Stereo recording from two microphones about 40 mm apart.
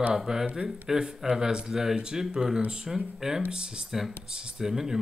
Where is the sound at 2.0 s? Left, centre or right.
Centre.